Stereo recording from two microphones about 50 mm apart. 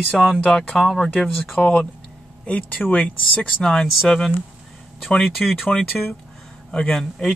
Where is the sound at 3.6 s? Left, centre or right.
Centre.